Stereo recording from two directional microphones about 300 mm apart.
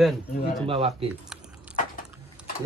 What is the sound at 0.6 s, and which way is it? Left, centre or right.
Speech, centre.